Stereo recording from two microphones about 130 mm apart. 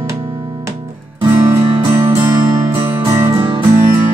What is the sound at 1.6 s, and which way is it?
Music, 45° right (ahead or behind).